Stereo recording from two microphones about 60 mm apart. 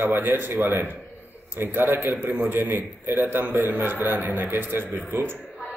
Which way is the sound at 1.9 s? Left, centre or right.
Right.